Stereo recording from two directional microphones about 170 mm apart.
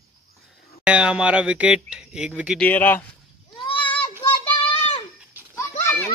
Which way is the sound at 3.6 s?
30° left (ahead or behind).